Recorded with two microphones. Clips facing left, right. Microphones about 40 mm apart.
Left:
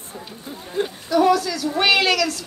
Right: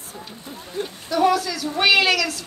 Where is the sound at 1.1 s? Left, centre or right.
Centre.